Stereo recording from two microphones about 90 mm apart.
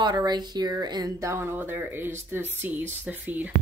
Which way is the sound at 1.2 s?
25° right (ahead or behind).